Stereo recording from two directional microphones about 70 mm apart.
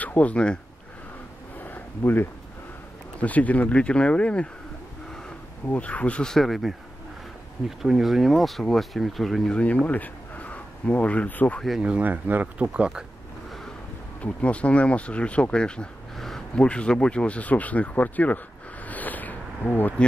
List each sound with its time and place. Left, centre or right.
0.0 s speech: left
1.6 s a sound: left
3.2 s speech: left
5.7 s speech: centre
6.3 s speech: centre
7.8 s speech: centre
9.6 s speech: centre
11.8 s speech: right
12.6 s speech: centre
14.2 s speech: centre
18.9 s a sound: left